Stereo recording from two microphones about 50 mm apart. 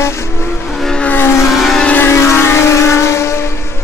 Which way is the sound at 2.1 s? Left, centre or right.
Left.